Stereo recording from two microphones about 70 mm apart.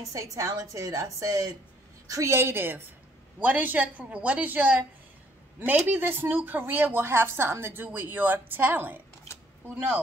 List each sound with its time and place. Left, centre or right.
0.1 s a woman's voice: right
2.3 s a woman's voice: right
3.3 s a woman's voice: right
5.9 s a woman's voice: right